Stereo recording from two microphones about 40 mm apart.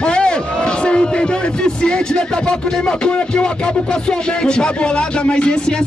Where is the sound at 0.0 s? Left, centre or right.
Left.